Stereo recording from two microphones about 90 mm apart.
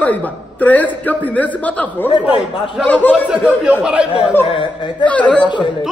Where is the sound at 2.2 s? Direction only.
10° right (ahead or behind).